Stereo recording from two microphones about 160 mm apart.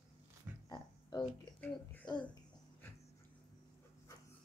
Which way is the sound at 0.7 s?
25° left (ahead or behind).